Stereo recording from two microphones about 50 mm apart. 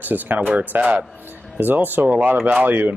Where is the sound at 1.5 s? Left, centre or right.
Right.